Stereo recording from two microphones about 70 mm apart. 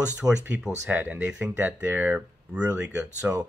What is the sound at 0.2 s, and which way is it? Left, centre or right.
Speech, right.